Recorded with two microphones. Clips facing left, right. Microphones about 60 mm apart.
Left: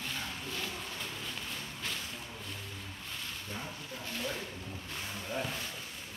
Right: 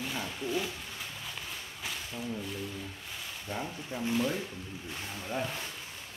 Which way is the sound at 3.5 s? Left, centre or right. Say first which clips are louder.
Right 9 dB; right.